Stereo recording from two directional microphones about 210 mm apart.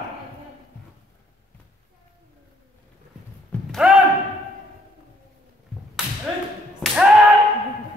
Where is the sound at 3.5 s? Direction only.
Centre (ahead or behind).